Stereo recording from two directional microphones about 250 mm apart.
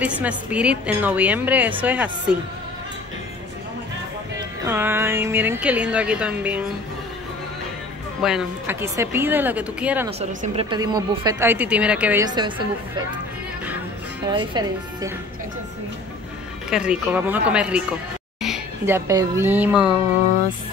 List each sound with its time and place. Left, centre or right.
0.0 s a woman's voice: centre
4.6 s a woman's voice: centre
8.2 s a woman's voice: centre
10.0 s a woman's voice: right
14.2 s a woman's voice: centre
16.7 s a woman's voice: centre